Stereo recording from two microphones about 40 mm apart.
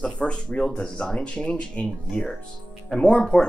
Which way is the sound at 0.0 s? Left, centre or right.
Left.